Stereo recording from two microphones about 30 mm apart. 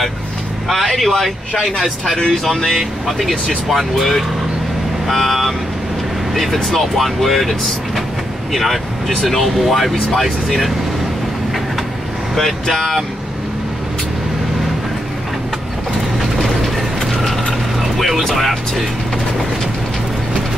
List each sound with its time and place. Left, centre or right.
0.7 s vehicle: centre
2.4 s speech: centre
9.2 s speech: centre
12.4 s speech: centre
16.3 s mechanisms: centre
17.7 s music: centre